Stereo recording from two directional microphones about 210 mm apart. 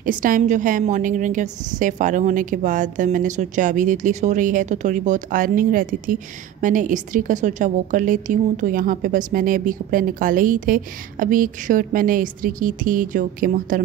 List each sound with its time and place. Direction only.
0.0 s a woman's voice: 40° right (ahead or behind)